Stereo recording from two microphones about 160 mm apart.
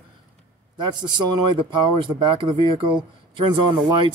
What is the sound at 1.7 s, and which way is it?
Speech, 30° right (ahead or behind).